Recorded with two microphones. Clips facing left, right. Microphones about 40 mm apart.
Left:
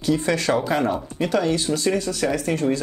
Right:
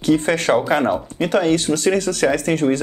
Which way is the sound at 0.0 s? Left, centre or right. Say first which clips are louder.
Right 4 dB; right.